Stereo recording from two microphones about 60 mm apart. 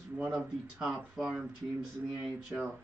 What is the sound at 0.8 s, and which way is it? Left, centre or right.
Speech, centre.